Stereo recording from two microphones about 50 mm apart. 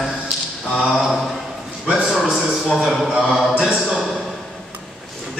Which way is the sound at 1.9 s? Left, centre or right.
Right.